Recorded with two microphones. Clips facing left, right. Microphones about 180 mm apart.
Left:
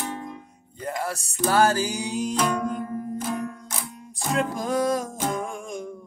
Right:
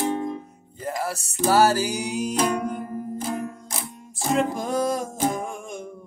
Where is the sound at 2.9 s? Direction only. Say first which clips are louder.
Even; 30° right (ahead or behind).